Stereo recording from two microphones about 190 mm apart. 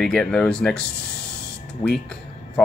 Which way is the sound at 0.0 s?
5° left (ahead or behind).